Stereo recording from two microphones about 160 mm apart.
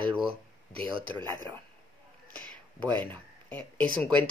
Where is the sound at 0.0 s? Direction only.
30° right (ahead or behind).